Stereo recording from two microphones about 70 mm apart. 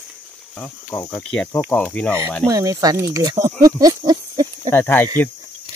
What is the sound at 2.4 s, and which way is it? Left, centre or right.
Speech, right.